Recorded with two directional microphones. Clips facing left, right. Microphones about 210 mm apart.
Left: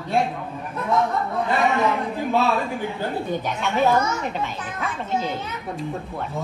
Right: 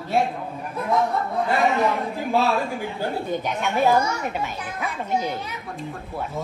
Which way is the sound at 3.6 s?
10° right (ahead or behind).